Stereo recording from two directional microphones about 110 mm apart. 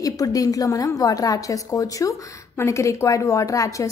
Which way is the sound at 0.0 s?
35° left (ahead or behind).